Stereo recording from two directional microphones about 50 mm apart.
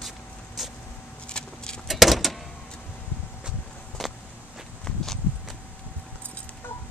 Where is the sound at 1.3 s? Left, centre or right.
Centre.